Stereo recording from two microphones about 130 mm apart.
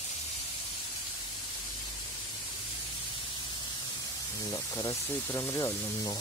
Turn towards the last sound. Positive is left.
turn(degrees=20)  # may be behind; listen again after turning